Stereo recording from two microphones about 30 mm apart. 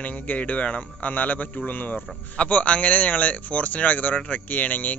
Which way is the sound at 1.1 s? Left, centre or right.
Left.